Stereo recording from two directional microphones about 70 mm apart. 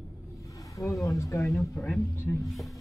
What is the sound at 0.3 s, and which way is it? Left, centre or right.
Vehicle, left.